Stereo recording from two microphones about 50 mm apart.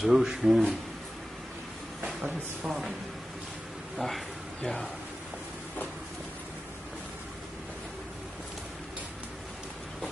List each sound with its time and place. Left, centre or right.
0.0 s speech: centre
2.0 s speech: centre
3.9 s speech: centre